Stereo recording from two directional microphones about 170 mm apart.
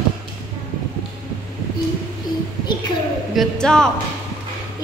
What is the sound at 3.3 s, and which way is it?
Speech, 5° left (ahead or behind).